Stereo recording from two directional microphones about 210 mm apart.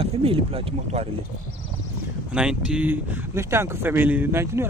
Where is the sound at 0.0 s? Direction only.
25° right (ahead or behind).